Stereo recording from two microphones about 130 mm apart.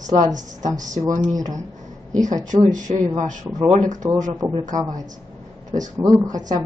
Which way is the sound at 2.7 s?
75° right (ahead or behind).